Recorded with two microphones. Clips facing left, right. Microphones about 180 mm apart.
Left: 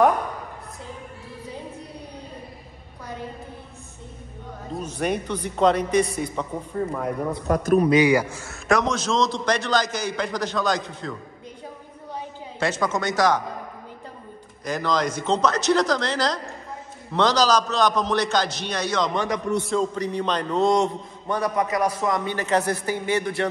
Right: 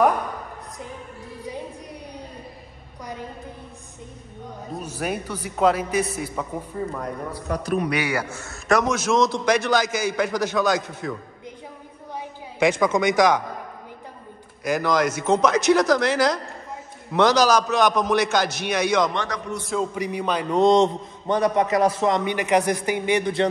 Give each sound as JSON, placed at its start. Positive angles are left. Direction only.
{"t": 4.8, "sound": "a man's voice", "side_deg": -5}
{"t": 7.4, "sound": "a man's voice", "side_deg": 50}
{"t": 7.9, "sound": "a man's voice", "side_deg": 15}
{"t": 8.6, "sound": "a man's voice", "side_deg": -5}
{"t": 12.1, "sound": "a sound", "side_deg": -15}
{"t": 14.6, "sound": "a man's voice", "side_deg": -10}
{"t": 19.1, "sound": "a man's voice", "side_deg": 15}
{"t": 19.7, "sound": "a man's voice", "side_deg": -10}
{"t": 20.6, "sound": "a man's voice", "side_deg": -20}